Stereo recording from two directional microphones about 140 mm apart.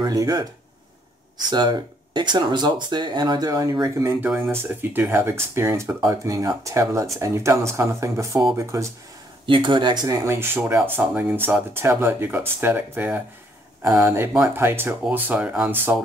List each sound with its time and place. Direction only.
0.0 s speech: 25° right (ahead or behind)
1.5 s speech: 30° right (ahead or behind)
9.5 s speech: 35° right (ahead or behind); by 13.2 s 15° right (ahead or behind)
14.5 s speech: 15° right (ahead or behind)